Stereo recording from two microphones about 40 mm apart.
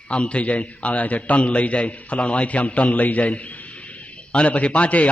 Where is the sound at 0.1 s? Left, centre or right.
Left.